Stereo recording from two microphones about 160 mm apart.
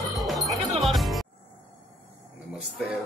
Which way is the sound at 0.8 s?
Centre (ahead or behind).